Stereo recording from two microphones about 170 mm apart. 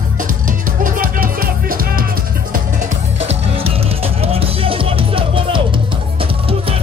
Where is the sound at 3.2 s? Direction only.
40° right (ahead or behind).